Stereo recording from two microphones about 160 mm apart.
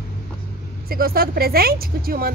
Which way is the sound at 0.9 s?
70° right (ahead or behind).